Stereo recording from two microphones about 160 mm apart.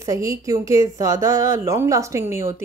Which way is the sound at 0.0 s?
20° right (ahead or behind).